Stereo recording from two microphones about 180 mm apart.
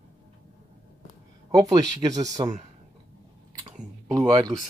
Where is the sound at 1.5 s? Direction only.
20° right (ahead or behind).